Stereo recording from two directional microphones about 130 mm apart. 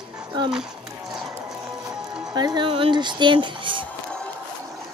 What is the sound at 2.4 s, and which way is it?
Speech, 35° right (ahead or behind).